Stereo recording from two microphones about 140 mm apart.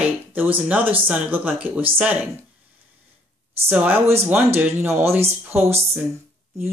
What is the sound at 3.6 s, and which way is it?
Speech, 15° right (ahead or behind).